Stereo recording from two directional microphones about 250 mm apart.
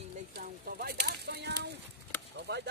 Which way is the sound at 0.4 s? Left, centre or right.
Right.